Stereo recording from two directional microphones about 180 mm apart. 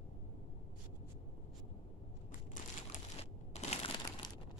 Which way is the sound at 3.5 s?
35° left (ahead or behind).